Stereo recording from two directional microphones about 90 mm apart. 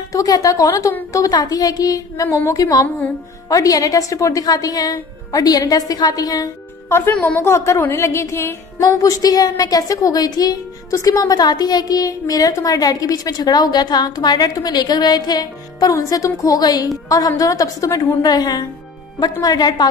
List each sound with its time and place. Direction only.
0.1 s a woman's voice: 40° left (ahead or behind)
6.9 s a woman's voice: 20° left (ahead or behind)
8.8 s a woman's voice: 40° left (ahead or behind)